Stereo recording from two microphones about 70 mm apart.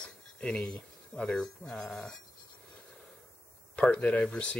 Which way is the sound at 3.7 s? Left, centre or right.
Centre.